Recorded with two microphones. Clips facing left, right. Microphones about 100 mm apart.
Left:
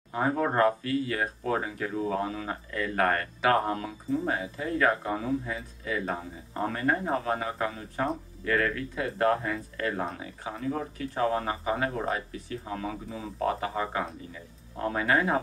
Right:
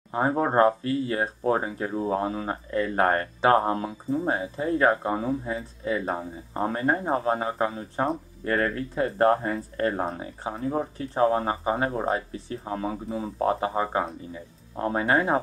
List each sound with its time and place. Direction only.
0.1 s speech: 30° right (ahead or behind)